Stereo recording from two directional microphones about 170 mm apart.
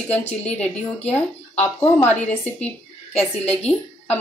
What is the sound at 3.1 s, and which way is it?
A woman's voice, 10° left (ahead or behind).